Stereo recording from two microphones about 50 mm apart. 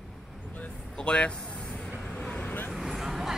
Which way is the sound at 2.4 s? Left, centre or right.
Left.